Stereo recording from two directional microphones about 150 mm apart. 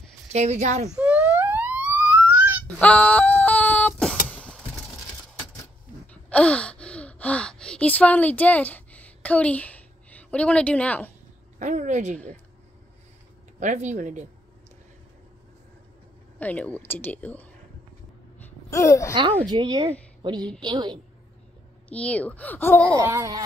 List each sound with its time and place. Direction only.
0.3 s speech: 50° right (ahead or behind)
0.8 s a sound: 10° right (ahead or behind)
2.8 s a sound: 10° left (ahead or behind)
4.3 s vehicle: 10° left (ahead or behind)
6.3 s gasp: 10° left (ahead or behind)
11.6 s speech: 55° right (ahead or behind)
13.6 s speech: 55° right (ahead or behind)
16.3 s speech: 10° left (ahead or behind)
18.7 s a woman's voice: 20° left (ahead or behind)
19.5 s speech: 30° right (ahead or behind)
20.2 s a sound: 30° right (ahead or behind)
20.6 s a woman's voice: 30° right (ahead or behind)
21.8 s speech: 10° left (ahead or behind)
22.9 s speech: 20° right (ahead or behind)